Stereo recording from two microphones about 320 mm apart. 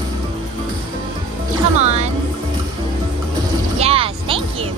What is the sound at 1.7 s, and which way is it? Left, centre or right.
Music, right.